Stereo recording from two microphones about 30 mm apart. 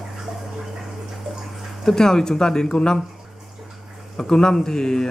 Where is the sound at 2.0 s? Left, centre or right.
Left.